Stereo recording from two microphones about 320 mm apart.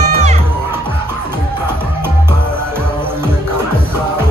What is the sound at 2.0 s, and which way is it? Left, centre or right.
Music, centre.